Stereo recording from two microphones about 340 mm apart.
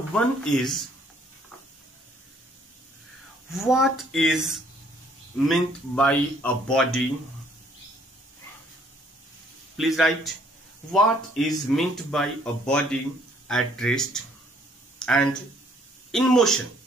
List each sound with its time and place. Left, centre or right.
0.1 s speech: centre
3.5 s speech: centre
9.8 s speech: centre
15.0 s a sound: centre
16.1 s speech: centre